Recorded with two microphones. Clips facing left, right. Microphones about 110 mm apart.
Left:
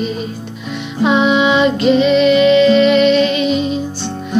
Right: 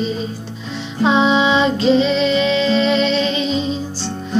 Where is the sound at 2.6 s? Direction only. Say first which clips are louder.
Left 6 dB; 30° right (ahead or behind).